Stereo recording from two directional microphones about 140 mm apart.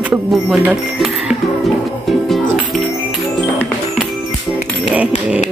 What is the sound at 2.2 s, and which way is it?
Music, centre (ahead or behind).